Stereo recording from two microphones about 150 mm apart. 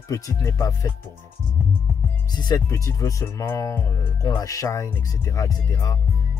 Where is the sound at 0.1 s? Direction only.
20° left (ahead or behind).